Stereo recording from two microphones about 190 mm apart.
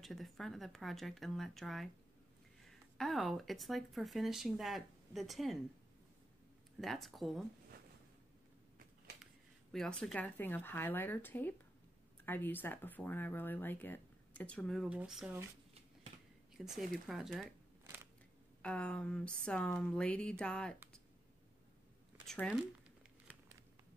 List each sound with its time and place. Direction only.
0.0 s speech: centre (ahead or behind)
6.8 s speech: centre (ahead or behind)
9.2 s speech: centre (ahead or behind)
16.7 s speech: centre (ahead or behind)
18.6 s speech: 5° left (ahead or behind)
22.2 s speech: centre (ahead or behind)